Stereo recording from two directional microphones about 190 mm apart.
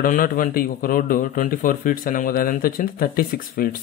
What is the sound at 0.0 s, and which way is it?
Speech, 45° left (ahead or behind).